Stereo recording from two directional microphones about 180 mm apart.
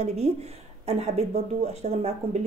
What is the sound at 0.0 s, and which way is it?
Speech, 35° right (ahead or behind).